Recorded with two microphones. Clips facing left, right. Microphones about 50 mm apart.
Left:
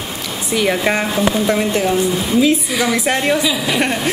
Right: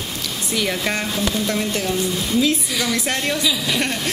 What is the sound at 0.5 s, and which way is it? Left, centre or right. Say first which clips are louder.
Speech: left 7 dB; centre.